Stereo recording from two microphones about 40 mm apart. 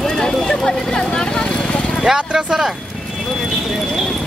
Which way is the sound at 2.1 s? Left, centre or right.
Centre.